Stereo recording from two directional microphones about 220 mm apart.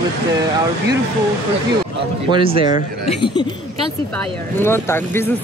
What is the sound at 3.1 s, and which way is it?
Speech, 20° left (ahead or behind).